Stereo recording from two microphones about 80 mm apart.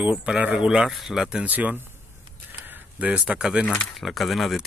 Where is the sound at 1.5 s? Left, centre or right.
Right.